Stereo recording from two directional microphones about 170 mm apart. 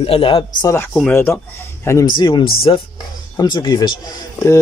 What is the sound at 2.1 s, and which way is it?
Speech, 25° left (ahead or behind).